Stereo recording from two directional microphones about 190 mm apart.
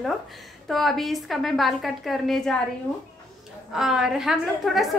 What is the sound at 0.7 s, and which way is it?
A woman's voice, centre (ahead or behind).